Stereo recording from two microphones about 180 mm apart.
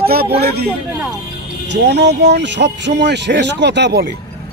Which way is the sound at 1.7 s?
70° right (ahead or behind).